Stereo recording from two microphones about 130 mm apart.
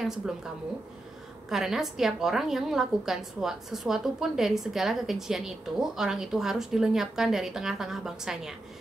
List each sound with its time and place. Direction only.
0.2 s a woman's voice: 5° right (ahead or behind)
1.5 s a woman's voice: 5° right (ahead or behind)